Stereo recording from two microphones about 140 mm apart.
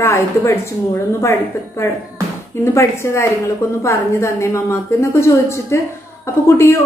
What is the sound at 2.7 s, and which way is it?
A woman's voice, 20° left (ahead or behind).